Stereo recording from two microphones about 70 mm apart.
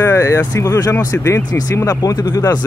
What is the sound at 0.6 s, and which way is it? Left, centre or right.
Speech, left.